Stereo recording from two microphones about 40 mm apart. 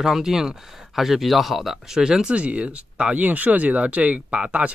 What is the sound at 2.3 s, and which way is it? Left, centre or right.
Speech, right.